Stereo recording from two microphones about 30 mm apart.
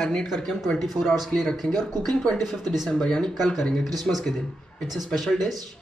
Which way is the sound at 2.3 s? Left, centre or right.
Centre.